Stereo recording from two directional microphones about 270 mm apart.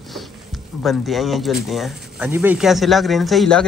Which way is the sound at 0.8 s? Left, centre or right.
Centre.